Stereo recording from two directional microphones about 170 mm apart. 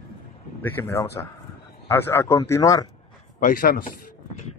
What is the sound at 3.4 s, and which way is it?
Speech, 60° left (ahead or behind).